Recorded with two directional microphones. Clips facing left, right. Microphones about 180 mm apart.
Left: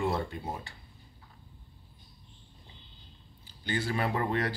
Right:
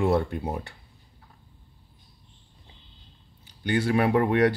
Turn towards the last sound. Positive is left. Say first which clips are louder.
# right 9 dB
turn(degrees=-65)  # may be behind; listen again after turning